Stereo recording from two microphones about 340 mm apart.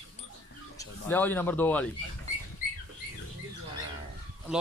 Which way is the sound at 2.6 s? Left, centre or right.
Left.